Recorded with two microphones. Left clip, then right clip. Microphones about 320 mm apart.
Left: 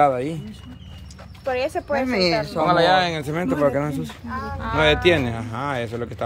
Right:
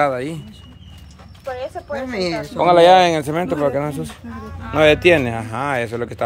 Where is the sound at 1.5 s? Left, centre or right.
Left.